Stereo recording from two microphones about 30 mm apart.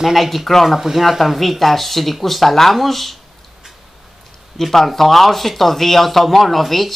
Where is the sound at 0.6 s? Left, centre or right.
Centre.